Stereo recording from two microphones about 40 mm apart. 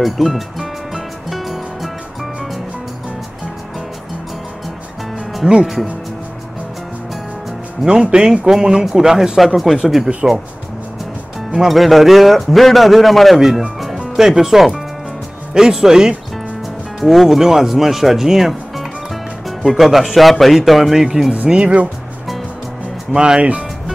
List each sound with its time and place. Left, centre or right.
0.0 s music: centre
5.4 s speech: centre
7.8 s speech: right
9.6 s a man's voice: centre
10.0 s speech: centre
11.7 s a man's voice: centre
17.0 s a man's voice: centre
21.5 s speech: right
23.1 s speech: centre